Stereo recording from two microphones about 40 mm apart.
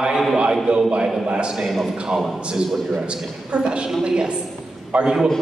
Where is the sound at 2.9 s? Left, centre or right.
Right.